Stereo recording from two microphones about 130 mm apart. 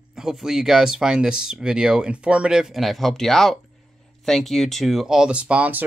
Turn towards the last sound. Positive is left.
turn(degrees=-10)  # may be behind; listen again after turning